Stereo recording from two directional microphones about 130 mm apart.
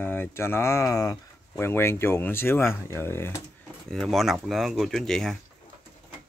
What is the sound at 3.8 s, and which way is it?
Speech, 5° left (ahead or behind).